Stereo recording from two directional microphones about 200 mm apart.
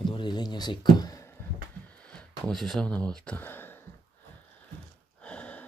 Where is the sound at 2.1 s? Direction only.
5° left (ahead or behind).